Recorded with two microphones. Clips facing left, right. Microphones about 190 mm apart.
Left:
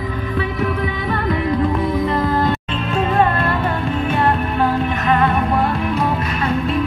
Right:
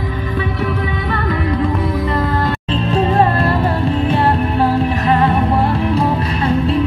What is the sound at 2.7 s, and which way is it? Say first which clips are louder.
Music: right 4 dB; 35° right (ahead or behind).